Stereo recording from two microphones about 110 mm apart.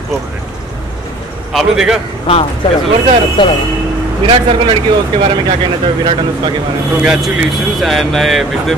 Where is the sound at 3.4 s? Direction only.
50° left (ahead or behind).